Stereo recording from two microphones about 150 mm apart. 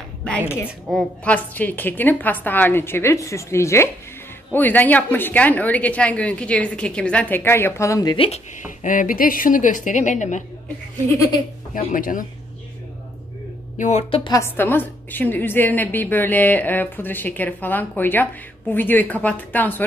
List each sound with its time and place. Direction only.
0.2 s a sound: 10° left (ahead or behind)
0.9 s a woman's voice: 10° left (ahead or behind)
8.6 s speech: 60° left (ahead or behind)
11.7 s speech: 65° left (ahead or behind)
13.7 s a woman's voice: 55° left (ahead or behind)
14.3 s a woman's voice: 15° left (ahead or behind)